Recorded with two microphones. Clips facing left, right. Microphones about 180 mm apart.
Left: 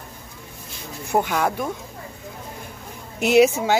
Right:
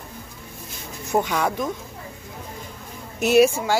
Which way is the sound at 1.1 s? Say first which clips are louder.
Left 1 dB; 10° left (ahead or behind).